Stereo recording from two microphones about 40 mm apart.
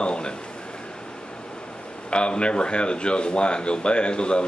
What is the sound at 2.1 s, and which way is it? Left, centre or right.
Speech, left.